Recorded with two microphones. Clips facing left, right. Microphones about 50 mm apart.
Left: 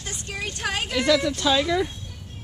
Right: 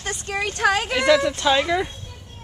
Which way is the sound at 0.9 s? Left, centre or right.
Right.